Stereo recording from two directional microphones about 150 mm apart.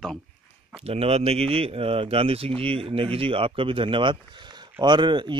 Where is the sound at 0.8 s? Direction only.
45° right (ahead or behind).